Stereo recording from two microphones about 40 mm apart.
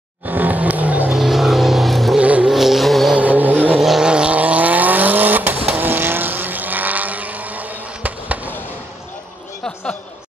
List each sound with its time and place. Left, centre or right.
0.3 s vehicle: right
1.1 s vehicle: centre
2.1 s vehicle: right
2.4 s vehicle: centre
3.2 s vehicle: right
3.7 s vehicle: centre
4.0 s vehicle: right
4.3 s vehicle: right